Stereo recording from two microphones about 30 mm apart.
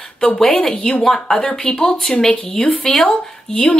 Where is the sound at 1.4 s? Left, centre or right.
Left.